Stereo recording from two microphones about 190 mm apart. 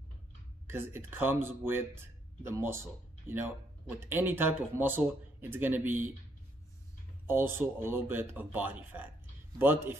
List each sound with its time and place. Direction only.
0.7 s speech: 10° right (ahead or behind)
7.2 s speech: 10° right (ahead or behind)